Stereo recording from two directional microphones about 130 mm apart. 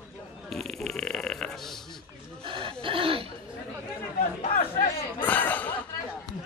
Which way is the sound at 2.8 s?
45° right (ahead or behind).